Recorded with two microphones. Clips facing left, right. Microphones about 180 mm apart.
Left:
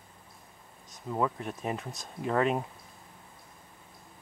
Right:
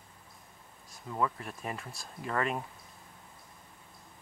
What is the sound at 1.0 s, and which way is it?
Speech, 15° left (ahead or behind).